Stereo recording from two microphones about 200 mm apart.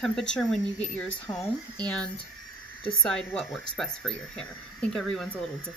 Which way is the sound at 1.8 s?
5° left (ahead or behind).